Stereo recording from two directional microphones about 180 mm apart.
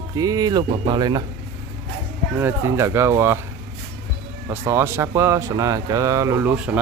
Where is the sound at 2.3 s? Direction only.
15° right (ahead or behind).